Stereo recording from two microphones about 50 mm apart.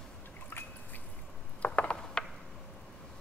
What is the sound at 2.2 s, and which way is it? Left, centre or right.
Mechanisms, centre.